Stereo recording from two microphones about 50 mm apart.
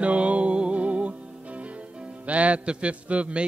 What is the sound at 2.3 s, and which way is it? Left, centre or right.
Music, right.